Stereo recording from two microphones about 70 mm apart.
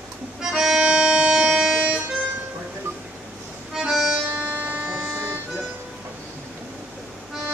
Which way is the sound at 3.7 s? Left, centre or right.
Centre.